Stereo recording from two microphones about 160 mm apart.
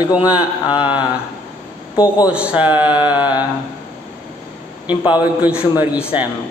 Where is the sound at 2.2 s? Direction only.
10° right (ahead or behind).